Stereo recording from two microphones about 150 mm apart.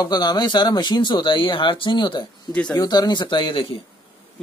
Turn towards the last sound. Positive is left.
turn(degrees=35)  # may be behind; listen again after turning